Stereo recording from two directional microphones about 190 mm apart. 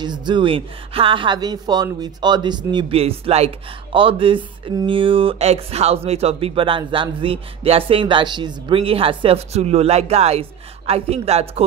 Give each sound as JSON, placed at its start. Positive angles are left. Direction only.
{"t": 0.0, "sound": "a woman's voice", "side_deg": -25}